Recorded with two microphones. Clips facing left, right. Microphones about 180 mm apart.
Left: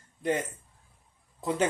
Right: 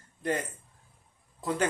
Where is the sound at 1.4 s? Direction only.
20° left (ahead or behind).